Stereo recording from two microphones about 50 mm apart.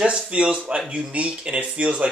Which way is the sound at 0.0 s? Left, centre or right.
Right.